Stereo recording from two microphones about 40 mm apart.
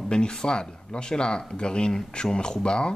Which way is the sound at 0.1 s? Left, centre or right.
Centre.